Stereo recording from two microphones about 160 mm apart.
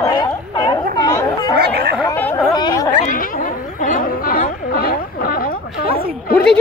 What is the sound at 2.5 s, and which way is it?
Chatter, 25° left (ahead or behind).